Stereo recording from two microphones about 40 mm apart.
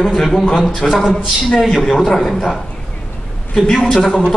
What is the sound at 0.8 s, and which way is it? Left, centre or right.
Speech, centre.